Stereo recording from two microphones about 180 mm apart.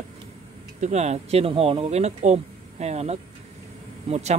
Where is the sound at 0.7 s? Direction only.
40° right (ahead or behind).